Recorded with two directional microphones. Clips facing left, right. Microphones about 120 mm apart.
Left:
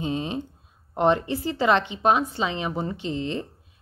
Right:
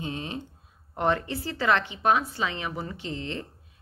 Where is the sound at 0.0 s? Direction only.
20° left (ahead or behind).